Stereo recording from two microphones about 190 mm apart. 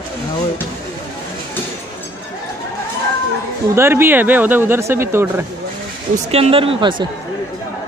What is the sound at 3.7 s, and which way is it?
Speech, 10° right (ahead or behind).